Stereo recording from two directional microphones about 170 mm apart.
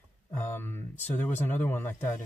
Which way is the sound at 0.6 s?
15° left (ahead or behind).